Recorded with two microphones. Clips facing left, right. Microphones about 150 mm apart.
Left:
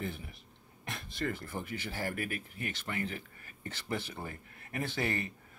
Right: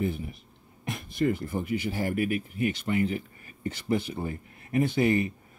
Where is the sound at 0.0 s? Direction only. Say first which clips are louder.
Right 10 dB; 15° right (ahead or behind).